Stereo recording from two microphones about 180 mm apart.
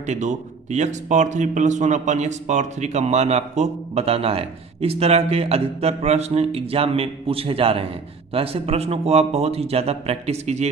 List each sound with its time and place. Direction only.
0.0 s speech: 40° right (ahead or behind)